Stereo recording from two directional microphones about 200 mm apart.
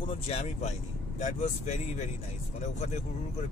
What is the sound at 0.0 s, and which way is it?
Speech, 30° left (ahead or behind).